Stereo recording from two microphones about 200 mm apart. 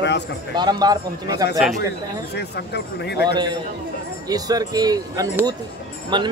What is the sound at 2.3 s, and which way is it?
Speech, 55° left (ahead or behind).